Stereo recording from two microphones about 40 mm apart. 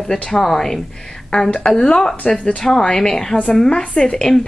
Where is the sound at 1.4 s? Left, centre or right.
Left.